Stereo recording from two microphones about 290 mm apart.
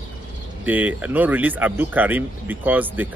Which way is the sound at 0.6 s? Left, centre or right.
Centre.